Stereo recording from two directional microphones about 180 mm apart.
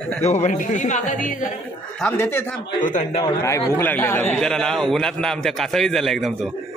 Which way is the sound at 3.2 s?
15° left (ahead or behind).